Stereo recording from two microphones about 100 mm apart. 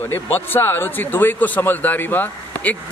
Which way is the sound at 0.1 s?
20° left (ahead or behind).